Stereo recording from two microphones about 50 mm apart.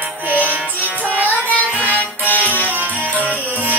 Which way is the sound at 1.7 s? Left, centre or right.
Left.